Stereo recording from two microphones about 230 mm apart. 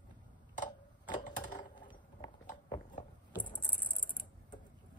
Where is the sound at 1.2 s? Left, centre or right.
Left.